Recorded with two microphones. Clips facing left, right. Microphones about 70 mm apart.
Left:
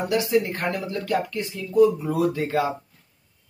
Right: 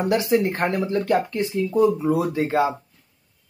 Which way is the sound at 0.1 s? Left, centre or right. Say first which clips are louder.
Right 1 dB; right.